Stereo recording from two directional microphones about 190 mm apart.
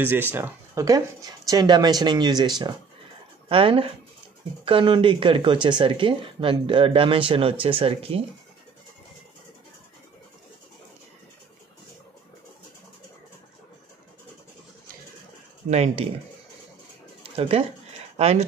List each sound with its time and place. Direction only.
0.0 s speech: 10° right (ahead or behind); by 8.2 s 30° right (ahead or behind)
15.7 s speech: 35° right (ahead or behind)
17.4 s speech: 30° right (ahead or behind)